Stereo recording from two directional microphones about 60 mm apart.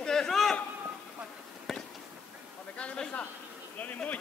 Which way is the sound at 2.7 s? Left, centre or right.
Centre.